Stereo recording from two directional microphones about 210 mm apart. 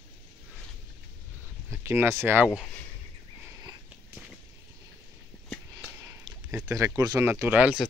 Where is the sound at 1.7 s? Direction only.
10° right (ahead or behind).